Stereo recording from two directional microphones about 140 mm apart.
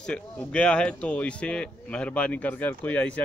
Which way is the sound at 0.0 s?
5° left (ahead or behind).